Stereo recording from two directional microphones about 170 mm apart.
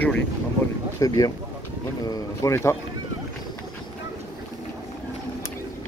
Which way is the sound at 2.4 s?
15° left (ahead or behind).